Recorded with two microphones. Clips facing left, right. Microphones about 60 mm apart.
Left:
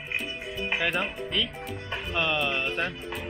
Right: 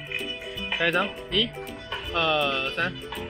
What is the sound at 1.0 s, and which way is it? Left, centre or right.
Speech, centre.